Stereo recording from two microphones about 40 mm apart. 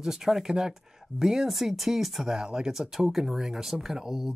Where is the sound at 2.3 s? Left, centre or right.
Centre.